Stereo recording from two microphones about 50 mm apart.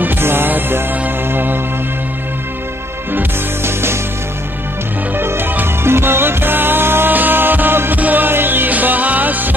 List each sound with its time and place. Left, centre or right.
0.0 s music: right
3.1 s music: right
5.1 s music: right